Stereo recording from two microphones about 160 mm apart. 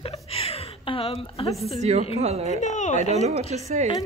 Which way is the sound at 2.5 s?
50° left (ahead or behind).